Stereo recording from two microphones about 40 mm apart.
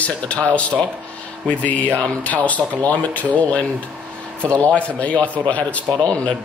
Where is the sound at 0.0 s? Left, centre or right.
Left.